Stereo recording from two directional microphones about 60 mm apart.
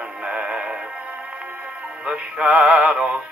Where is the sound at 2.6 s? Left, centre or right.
Right.